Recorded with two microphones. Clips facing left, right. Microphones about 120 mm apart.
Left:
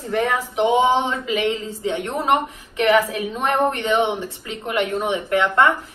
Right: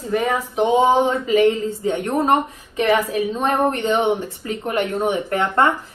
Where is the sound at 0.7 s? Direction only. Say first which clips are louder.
Right 2 dB; 35° right (ahead or behind).